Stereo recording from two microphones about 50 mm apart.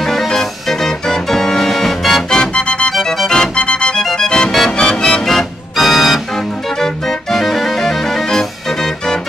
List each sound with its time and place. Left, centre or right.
0.0 s music: centre
2.2 s music: centre
2.9 s music: centre
4.7 s music: centre
5.2 s organ: centre